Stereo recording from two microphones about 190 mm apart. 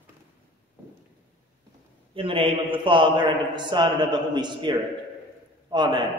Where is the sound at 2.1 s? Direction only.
30° right (ahead or behind).